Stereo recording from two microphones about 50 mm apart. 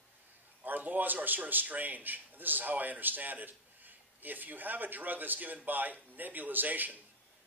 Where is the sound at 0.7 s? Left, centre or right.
Right.